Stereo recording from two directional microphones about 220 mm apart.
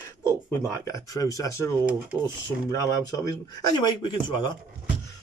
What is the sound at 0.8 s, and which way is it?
Speech, 15° left (ahead or behind).